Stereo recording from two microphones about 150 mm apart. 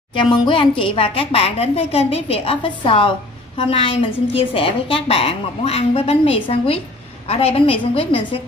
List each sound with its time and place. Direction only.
0.1 s a woman's voice: 30° left (ahead or behind)